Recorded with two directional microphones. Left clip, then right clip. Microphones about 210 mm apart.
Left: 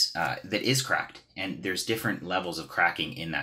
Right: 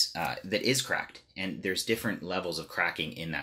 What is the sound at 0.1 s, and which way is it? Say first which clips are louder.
Speech: left 2 dB; 45° right (ahead or behind).